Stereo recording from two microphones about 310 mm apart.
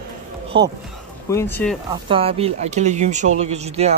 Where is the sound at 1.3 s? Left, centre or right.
Centre.